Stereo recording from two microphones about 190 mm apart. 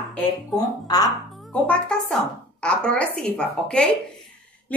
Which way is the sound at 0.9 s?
20° left (ahead or behind).